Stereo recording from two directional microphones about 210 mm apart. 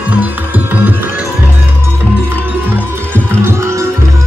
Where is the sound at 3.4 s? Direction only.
15° right (ahead or behind).